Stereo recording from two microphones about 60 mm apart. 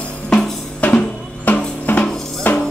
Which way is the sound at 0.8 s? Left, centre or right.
Left.